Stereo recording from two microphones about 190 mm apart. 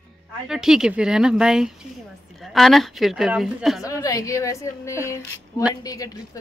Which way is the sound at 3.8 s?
15° left (ahead or behind).